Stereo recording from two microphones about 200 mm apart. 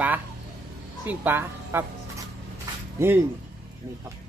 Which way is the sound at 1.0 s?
10° right (ahead or behind).